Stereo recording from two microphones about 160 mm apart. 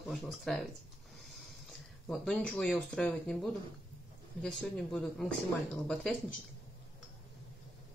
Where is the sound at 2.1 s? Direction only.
5° left (ahead or behind).